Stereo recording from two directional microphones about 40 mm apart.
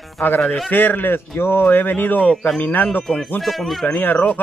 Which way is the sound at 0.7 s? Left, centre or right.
Left.